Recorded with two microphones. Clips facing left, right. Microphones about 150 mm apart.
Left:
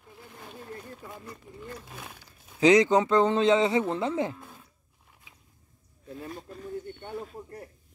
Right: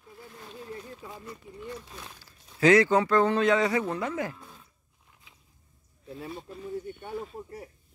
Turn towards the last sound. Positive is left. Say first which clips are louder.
# right 1 dB
turn(degrees=-5)  # may be behind; listen again after turning